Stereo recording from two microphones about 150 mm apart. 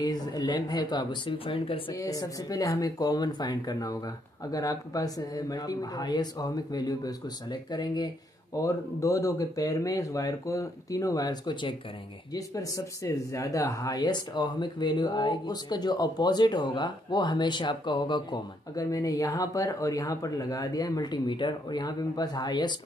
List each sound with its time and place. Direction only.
0.0 s speech: 25° left (ahead or behind)
2.0 s speech: 25° left (ahead or behind)